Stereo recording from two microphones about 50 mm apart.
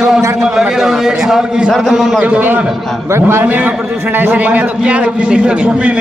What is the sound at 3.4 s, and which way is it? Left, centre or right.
Speech, right.